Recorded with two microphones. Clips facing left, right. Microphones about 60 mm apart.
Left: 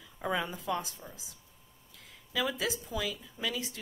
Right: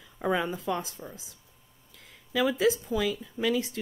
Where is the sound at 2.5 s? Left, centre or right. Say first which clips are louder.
Right 9 dB; right.